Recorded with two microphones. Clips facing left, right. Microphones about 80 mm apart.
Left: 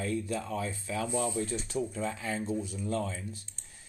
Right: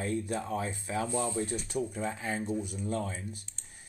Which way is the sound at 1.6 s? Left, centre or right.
Centre.